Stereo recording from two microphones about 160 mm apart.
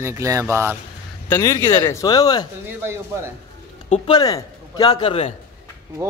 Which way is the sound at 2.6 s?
15° right (ahead or behind).